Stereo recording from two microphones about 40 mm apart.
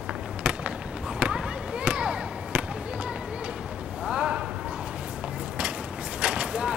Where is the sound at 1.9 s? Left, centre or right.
Right.